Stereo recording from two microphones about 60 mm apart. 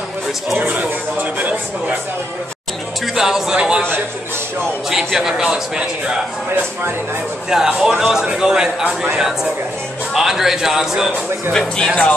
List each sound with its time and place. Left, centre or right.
0.7 s speech: right
3.2 s a man's voice: centre
4.8 s a man's voice: centre
7.4 s a man's voice: centre